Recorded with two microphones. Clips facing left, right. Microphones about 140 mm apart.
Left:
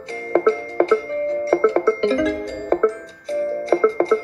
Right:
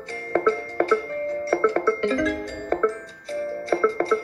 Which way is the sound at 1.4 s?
25° left (ahead or behind).